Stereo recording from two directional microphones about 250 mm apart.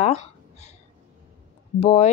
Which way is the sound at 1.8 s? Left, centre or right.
Left.